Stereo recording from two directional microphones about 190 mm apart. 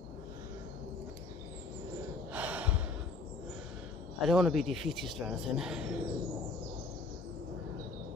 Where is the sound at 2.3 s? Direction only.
10° right (ahead or behind).